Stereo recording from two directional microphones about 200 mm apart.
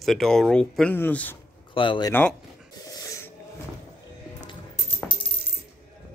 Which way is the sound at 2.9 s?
15° left (ahead or behind).